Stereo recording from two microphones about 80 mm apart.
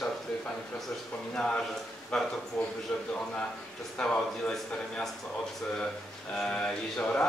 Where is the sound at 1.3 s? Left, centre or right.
Centre.